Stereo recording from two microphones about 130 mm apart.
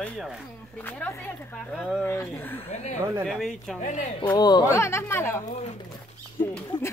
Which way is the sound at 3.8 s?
70° left (ahead or behind).